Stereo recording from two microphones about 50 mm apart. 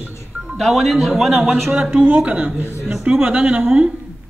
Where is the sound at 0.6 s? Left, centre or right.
Centre.